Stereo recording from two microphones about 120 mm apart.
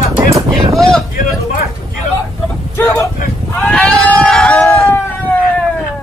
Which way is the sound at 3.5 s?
10° left (ahead or behind).